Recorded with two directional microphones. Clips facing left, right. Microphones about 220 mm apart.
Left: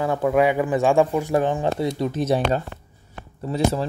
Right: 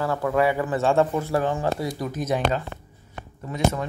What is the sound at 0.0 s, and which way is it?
Speech, 20° left (ahead or behind).